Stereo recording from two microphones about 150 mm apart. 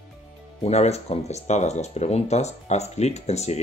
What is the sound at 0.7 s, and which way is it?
Speech, 45° left (ahead or behind).